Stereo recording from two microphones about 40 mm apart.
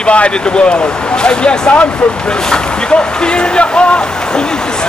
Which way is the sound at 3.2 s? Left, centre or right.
Left.